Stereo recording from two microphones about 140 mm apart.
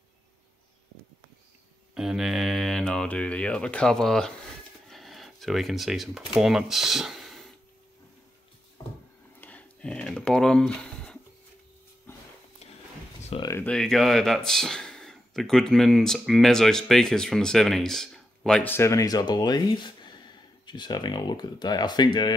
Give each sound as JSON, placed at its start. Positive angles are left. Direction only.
{"t": 2.0, "sound": "speech", "side_deg": -5}
{"t": 9.4, "sound": "a sound", "side_deg": 10}
{"t": 13.5, "sound": "speech", "side_deg": 15}
{"t": 13.7, "sound": "speech", "side_deg": 0}